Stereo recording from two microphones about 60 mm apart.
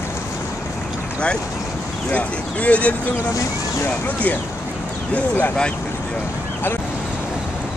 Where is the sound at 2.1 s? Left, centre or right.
Left.